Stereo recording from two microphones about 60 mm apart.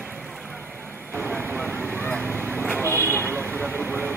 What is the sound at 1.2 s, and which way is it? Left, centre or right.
Vehicle, right.